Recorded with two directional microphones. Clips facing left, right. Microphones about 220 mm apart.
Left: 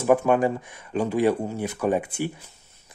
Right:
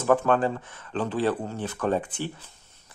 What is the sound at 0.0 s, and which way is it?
Speech, 10° left (ahead or behind).